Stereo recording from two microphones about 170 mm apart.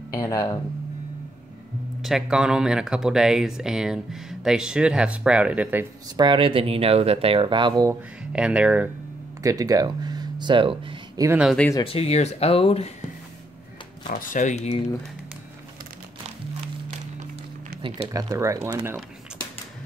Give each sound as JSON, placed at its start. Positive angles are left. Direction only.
{"t": 0.1, "sound": "speech", "side_deg": 15}
{"t": 2.0, "sound": "speech", "side_deg": 0}
{"t": 6.0, "sound": "speech", "side_deg": -25}
{"t": 8.2, "sound": "speech", "side_deg": -5}
{"t": 9.4, "sound": "speech", "side_deg": -20}
{"t": 11.2, "sound": "speech", "side_deg": -5}
{"t": 11.8, "sound": "speech", "side_deg": 35}
{"t": 14.0, "sound": "speech", "side_deg": 50}
{"t": 18.1, "sound": "speech", "side_deg": -20}